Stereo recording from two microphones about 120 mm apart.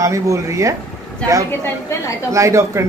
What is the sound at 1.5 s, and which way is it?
Speech, 25° left (ahead or behind).